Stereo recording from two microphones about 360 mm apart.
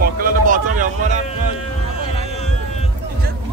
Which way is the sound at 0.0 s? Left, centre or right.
Right.